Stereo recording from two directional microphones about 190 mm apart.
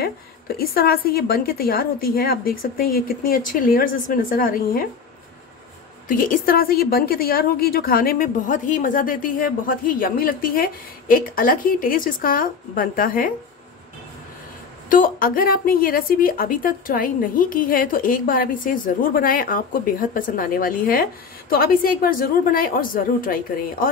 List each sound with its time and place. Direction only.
0.0 s a woman's voice: 55° left (ahead or behind)
6.0 s a woman's voice: 45° left (ahead or behind)
14.9 s a woman's voice: 50° left (ahead or behind)